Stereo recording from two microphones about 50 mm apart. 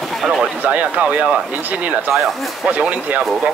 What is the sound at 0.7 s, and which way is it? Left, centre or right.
Speech, right.